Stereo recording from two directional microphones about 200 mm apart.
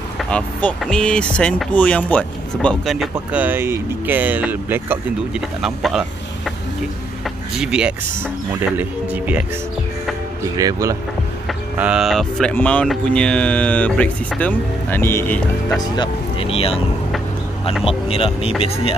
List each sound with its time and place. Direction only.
0.3 s speech: 5° left (ahead or behind)
7.5 s speech: 5° right (ahead or behind)
10.5 s speech: 15° right (ahead or behind)
11.4 s speech: 5° right (ahead or behind)
15.8 s speech: 25° left (ahead or behind)
17.8 s speech: 30° left (ahead or behind)